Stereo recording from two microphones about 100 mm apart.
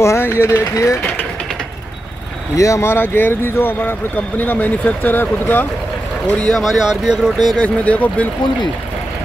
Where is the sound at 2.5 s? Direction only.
30° left (ahead or behind).